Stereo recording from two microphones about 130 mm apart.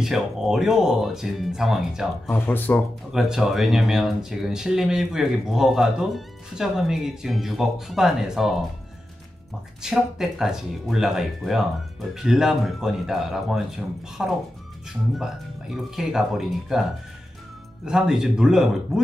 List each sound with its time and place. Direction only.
0.0 s speech: 5° right (ahead or behind)
2.2 s speech: 15° left (ahead or behind)
3.1 s speech: 5° right (ahead or behind)
9.8 s speech: 5° right (ahead or behind)
17.8 s speech: 5° right (ahead or behind)